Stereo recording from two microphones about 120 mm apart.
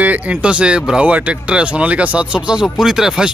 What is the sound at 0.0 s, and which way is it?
Speech, 10° right (ahead or behind).